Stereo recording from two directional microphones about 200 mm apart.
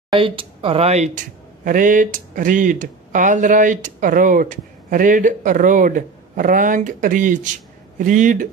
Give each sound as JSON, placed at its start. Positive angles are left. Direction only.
{"t": 0.1, "sound": "speech", "side_deg": -25}